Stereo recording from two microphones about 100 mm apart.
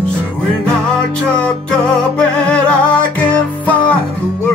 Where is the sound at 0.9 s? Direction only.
10° left (ahead or behind).